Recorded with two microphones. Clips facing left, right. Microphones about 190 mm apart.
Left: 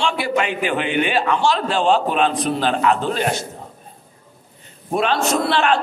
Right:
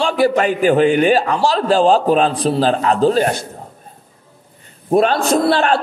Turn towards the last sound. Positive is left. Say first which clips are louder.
# right 4 dB
turn(degrees=-40)  # may be behind; listen again after turning